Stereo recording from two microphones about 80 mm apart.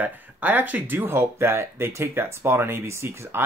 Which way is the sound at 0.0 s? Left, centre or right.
Right.